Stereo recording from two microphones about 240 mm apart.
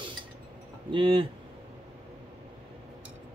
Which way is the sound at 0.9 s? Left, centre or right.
Right.